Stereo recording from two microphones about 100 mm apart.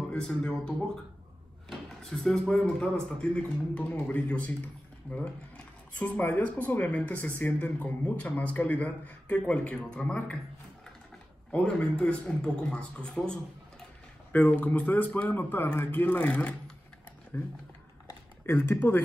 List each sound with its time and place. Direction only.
0.1 s speech: 10° left (ahead or behind)
5.9 s speech: 15° left (ahead or behind)
11.5 s speech: 10° left (ahead or behind)
18.4 s speech: 25° left (ahead or behind)